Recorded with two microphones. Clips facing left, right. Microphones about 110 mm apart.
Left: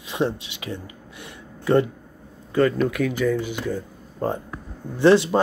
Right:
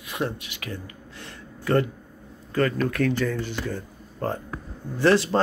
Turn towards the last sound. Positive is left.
turn(degrees=20)  # may be behind; listen again after turning